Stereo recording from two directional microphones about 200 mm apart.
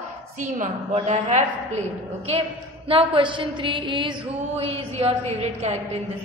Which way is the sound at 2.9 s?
25° right (ahead or behind).